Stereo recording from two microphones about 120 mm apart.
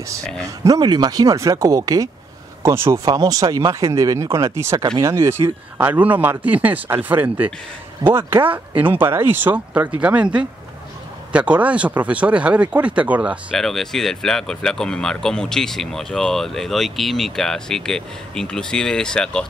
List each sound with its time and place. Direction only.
0.4 s speech: 30° right (ahead or behind)
8.3 s speech: 45° right (ahead or behind)
8.7 s speech: 15° right (ahead or behind)
13.6 s speech: centre (ahead or behind)